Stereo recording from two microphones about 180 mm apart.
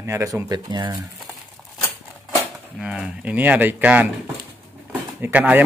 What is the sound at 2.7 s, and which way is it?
Speech, 5° right (ahead or behind).